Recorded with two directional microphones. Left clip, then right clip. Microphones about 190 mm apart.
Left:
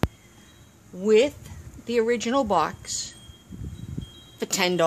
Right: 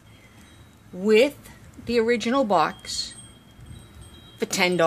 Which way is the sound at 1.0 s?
5° left (ahead or behind).